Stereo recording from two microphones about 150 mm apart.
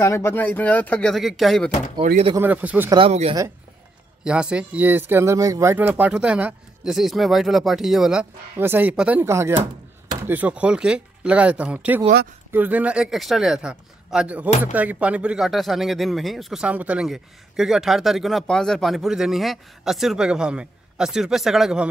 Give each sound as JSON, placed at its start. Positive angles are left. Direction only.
{"t": 0.0, "sound": "speech", "side_deg": 20}
{"t": 2.3, "sound": "speech", "side_deg": -10}
{"t": 3.1, "sound": "speech", "side_deg": -45}
{"t": 4.2, "sound": "speech", "side_deg": -5}